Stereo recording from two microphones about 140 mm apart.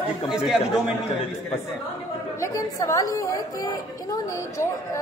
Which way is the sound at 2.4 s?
25° left (ahead or behind).